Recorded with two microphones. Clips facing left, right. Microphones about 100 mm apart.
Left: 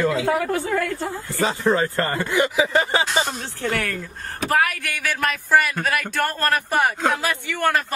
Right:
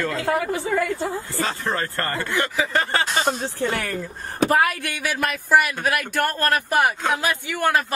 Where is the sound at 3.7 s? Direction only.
20° right (ahead or behind).